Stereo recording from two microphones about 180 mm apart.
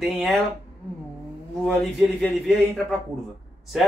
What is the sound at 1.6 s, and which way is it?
Speech, centre (ahead or behind).